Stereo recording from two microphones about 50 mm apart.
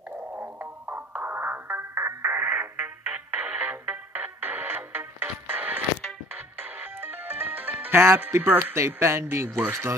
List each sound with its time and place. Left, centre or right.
0.3 s music: right
8.7 s speech: right